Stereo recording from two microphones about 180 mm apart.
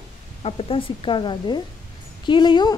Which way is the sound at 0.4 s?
30° left (ahead or behind).